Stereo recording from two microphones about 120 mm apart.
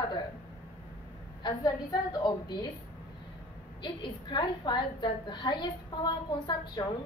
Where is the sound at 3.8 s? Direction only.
40° left (ahead or behind).